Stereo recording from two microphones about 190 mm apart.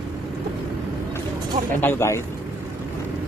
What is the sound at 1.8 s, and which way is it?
Speech, 10° left (ahead or behind).